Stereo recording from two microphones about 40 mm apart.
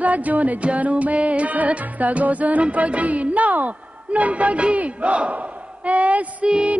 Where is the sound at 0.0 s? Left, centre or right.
Right.